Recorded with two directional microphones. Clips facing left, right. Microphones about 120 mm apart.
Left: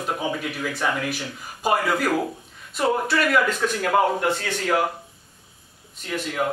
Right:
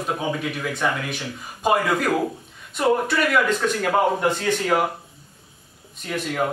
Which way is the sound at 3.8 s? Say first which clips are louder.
Left 1 dB; 15° right (ahead or behind).